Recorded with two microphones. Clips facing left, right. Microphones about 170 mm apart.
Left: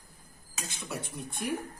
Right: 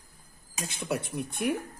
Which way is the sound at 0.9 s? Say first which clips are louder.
Right 8 dB; 65° right (ahead or behind).